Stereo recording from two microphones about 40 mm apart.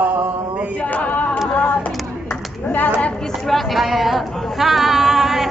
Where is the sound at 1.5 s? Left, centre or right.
Left.